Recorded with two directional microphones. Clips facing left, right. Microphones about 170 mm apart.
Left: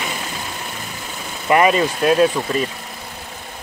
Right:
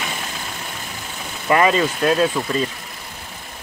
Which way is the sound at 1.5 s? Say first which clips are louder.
Left 2 dB; 20° left (ahead or behind).